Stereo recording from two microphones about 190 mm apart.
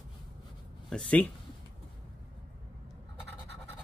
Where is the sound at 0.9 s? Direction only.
5° left (ahead or behind).